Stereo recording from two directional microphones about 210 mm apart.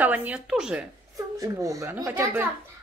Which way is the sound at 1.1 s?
15° right (ahead or behind).